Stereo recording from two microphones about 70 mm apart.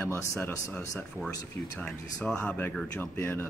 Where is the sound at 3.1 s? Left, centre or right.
Left.